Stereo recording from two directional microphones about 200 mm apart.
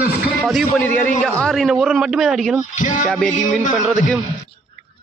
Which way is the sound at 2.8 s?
40° left (ahead or behind).